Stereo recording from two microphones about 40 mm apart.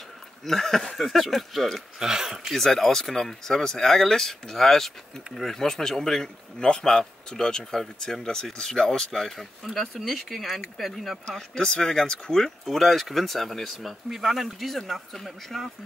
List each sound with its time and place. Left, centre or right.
0.5 s speech: centre
2.0 s speech: centre
2.5 s speech: centre
11.2 s speech: centre
12.4 s speech: centre